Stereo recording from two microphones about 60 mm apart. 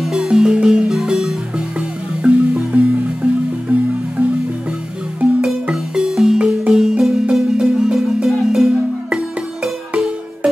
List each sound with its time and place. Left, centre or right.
0.0 s music: centre
5.7 s music: centre